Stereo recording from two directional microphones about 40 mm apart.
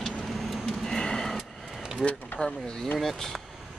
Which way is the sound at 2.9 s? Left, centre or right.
Centre.